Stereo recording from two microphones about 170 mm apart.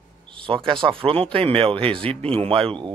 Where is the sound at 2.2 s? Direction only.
35° right (ahead or behind).